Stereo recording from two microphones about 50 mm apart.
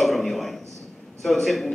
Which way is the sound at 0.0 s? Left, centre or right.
Centre.